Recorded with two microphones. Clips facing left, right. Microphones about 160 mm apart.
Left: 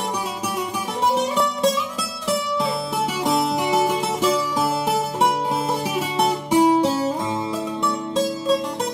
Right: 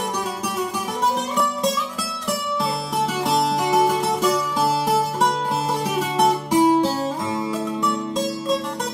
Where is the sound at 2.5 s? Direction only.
Centre (ahead or behind).